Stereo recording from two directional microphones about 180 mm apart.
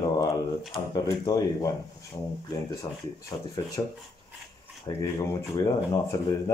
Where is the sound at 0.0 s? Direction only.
20° left (ahead or behind).